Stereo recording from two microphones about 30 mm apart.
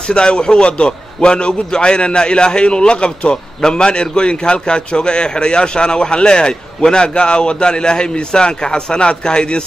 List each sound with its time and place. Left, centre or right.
0.1 s a man's voice: left